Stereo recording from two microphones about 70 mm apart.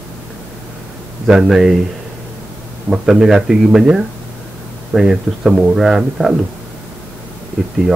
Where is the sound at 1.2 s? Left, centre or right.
Centre.